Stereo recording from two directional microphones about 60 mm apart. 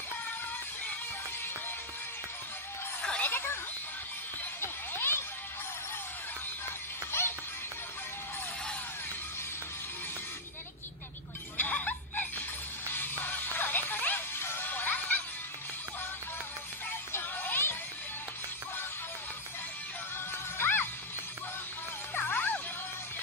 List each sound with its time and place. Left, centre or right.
3.0 s music: left
3.3 s a sound: left
4.6 s a sound: left
7.1 s music: left
11.5 s music: left
17.4 s music: left
20.5 s music: left
22.1 s music: left